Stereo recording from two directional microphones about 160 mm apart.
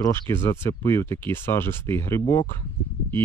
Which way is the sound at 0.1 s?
15° left (ahead or behind).